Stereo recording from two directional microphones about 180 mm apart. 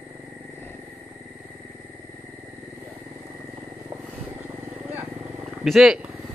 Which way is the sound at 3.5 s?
15° right (ahead or behind).